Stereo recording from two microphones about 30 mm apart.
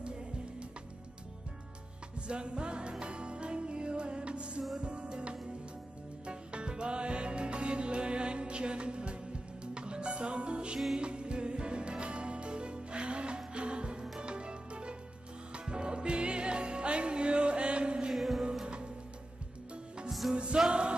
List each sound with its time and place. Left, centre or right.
2.1 s music: right
18.1 s music: centre
20.1 s music: centre